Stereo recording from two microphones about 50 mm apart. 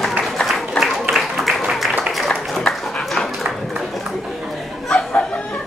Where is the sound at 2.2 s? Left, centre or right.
Centre.